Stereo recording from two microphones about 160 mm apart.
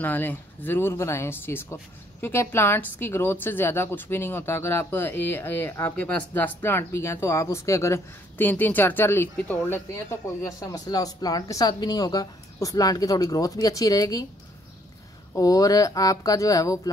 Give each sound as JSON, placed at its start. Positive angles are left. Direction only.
{"t": 0.0, "sound": "a woman's voice", "side_deg": 10}
{"t": 15.3, "sound": "speech", "side_deg": 20}